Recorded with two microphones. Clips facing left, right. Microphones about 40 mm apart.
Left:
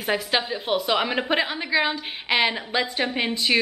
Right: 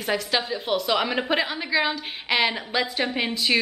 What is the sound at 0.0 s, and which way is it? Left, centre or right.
A woman's voice, centre.